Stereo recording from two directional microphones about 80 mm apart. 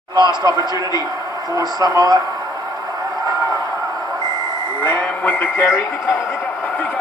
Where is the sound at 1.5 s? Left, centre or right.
Right.